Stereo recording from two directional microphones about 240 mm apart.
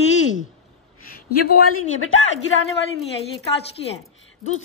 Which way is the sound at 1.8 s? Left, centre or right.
Left.